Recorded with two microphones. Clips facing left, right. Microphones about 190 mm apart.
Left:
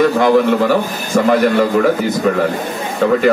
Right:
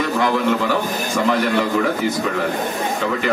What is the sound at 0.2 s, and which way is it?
Speech, 50° left (ahead or behind).